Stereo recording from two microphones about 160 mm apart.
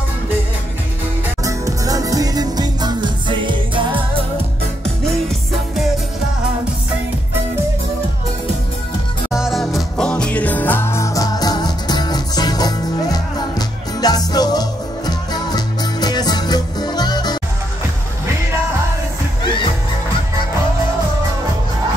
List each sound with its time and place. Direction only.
1.4 s music: 20° right (ahead or behind)
9.3 s music: centre (ahead or behind); by 17.4 s 25° left (ahead or behind)